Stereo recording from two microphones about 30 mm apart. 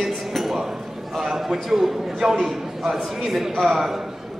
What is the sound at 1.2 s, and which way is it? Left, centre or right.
A man's voice, centre.